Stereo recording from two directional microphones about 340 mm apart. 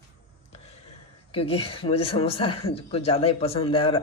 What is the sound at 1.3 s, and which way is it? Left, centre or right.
Speech, centre.